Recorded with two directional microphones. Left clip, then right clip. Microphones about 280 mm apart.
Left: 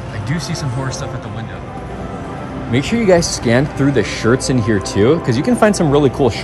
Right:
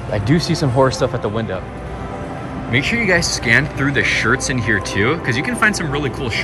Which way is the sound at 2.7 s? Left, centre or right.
Centre.